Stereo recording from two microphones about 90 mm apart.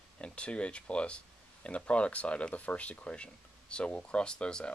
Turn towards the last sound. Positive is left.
turn(degrees=10)  # may be behind; listen again after turning